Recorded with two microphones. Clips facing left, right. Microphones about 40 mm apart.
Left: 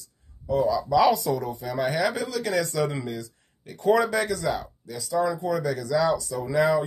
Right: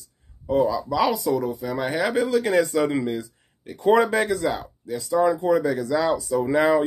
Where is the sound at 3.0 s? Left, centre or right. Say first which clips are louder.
Right 6 dB; right.